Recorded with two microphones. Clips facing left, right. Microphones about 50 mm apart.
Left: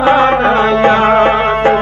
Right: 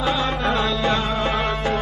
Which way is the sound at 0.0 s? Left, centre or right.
Left.